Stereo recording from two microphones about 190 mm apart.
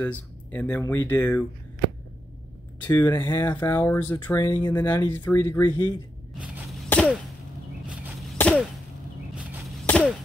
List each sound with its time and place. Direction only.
0.0 s speech: 10° left (ahead or behind)
2.9 s speech: 10° left (ahead or behind)
5.7 s speech: 25° left (ahead or behind)
6.9 s a sound: 5° left (ahead or behind)
7.8 s chop: 5° right (ahead or behind)
8.4 s a sound: 5° left (ahead or behind)
9.3 s chop: 5° right (ahead or behind)
9.8 s chop: 5° left (ahead or behind)